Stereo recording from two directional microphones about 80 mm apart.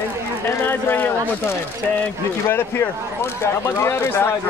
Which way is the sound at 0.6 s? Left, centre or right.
Left.